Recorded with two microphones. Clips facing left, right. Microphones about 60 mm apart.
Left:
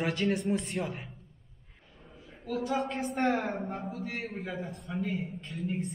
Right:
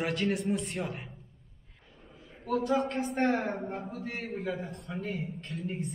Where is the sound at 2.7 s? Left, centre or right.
Centre.